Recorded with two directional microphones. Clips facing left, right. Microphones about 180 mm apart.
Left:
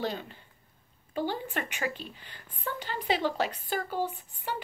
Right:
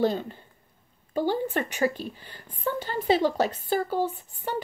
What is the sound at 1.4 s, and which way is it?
Speech, 40° right (ahead or behind).